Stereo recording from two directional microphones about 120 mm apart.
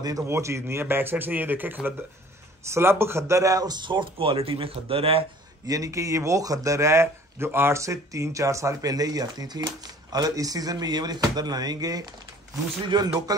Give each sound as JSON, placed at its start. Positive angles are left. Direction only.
{"t": 0.0, "sound": "a man's voice", "side_deg": -25}
{"t": 5.7, "sound": "speech", "side_deg": -25}